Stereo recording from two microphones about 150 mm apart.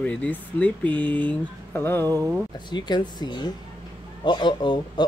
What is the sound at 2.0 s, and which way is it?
Speech, 25° right (ahead or behind).